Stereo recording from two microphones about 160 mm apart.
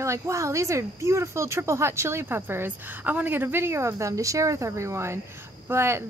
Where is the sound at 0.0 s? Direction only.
20° right (ahead or behind).